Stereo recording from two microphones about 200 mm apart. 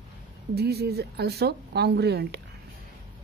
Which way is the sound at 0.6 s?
55° right (ahead or behind).